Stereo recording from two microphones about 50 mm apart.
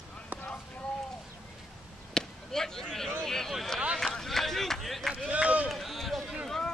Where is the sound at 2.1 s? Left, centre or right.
Centre.